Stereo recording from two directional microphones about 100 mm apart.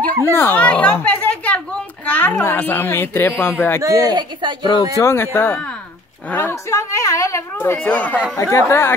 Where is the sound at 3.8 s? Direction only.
35° right (ahead or behind).